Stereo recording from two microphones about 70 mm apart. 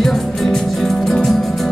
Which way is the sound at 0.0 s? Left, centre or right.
Centre.